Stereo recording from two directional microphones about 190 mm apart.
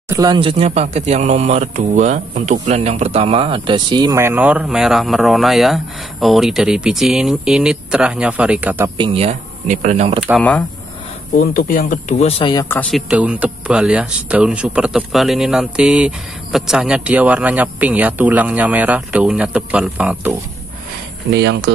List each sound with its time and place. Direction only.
0.1 s speech: 20° right (ahead or behind)
8.9 s speech: 25° right (ahead or behind)
11.3 s speech: 50° left (ahead or behind); by 12.6 s 25° left (ahead or behind)
12.9 s speech: 5° right (ahead or behind)
21.3 s speech: 65° right (ahead or behind)